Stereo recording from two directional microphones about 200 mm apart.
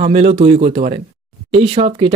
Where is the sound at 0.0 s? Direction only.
30° right (ahead or behind).